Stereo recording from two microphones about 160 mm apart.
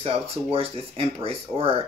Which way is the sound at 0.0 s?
35° right (ahead or behind).